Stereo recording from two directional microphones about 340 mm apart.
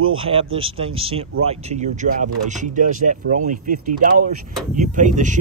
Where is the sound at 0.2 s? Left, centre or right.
Centre.